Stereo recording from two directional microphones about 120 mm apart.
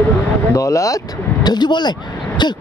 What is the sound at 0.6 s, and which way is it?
Speech, 25° left (ahead or behind).